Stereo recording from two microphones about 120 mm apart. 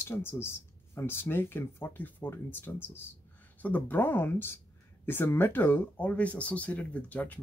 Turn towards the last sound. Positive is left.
turn(degrees=10)  # may be behind; listen again after turning